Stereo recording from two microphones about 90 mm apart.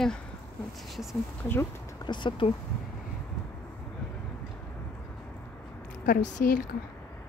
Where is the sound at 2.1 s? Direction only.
60° left (ahead or behind).